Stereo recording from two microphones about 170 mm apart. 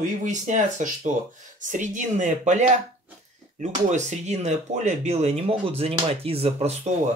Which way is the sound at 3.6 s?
45° right (ahead or behind).